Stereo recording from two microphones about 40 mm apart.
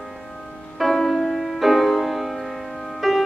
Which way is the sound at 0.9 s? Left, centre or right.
Centre.